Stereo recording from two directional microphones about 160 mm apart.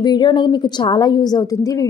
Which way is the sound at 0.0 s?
25° left (ahead or behind).